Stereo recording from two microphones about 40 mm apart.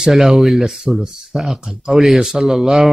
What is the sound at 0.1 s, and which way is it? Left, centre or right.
Speech, centre.